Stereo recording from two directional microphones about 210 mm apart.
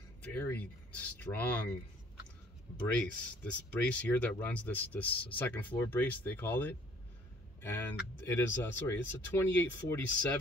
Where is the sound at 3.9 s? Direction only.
5° left (ahead or behind).